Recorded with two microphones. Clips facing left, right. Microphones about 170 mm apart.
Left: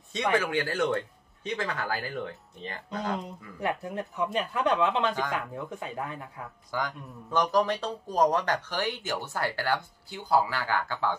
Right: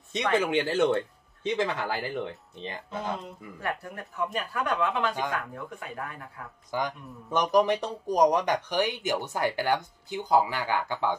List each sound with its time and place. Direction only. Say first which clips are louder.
0.3 s speech: right 2 dB; 20° right (ahead or behind)
3.6 s speech: left 4 dB; 20° left (ahead or behind)
6.7 s speech: right 2 dB; 20° right (ahead or behind)